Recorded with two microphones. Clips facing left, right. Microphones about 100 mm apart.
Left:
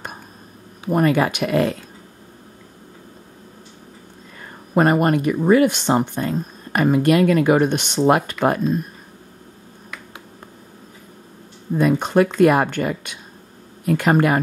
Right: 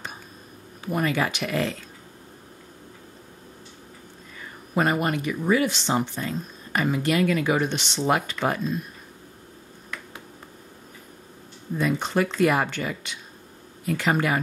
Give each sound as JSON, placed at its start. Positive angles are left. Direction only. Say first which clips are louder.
{"t": 0.8, "sound": "speech", "louder": "left 7 dB", "side_deg": 50}
{"t": 4.4, "sound": "speech", "louder": "left 7 dB", "side_deg": 45}
{"t": 11.7, "sound": "speech", "louder": "left 7 dB", "side_deg": 50}